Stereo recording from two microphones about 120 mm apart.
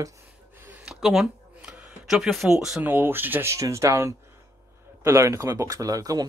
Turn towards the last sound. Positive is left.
turn(degrees=-30)  # may be behind; listen again after turning